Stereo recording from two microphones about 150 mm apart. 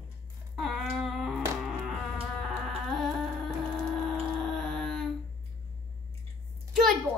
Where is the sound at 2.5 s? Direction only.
Centre (ahead or behind).